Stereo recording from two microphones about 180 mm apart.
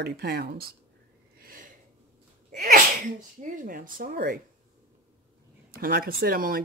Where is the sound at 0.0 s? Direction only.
60° right (ahead or behind).